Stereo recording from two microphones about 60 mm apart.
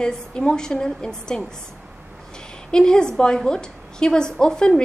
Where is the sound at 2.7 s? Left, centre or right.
Centre.